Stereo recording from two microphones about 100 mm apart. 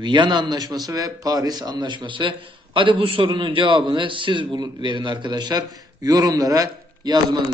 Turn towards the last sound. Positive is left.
turn(degrees=-40)  # may be behind; listen again after turning